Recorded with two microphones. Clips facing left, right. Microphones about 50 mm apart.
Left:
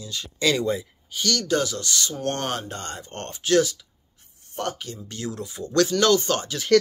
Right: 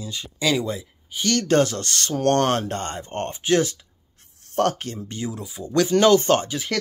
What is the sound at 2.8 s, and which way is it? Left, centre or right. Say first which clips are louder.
Speech: right 6 dB; right.